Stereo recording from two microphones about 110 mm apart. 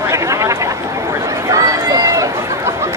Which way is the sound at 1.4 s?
30° right (ahead or behind).